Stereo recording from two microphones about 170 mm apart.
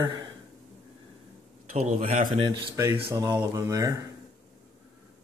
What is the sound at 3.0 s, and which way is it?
Speech, 20° right (ahead or behind).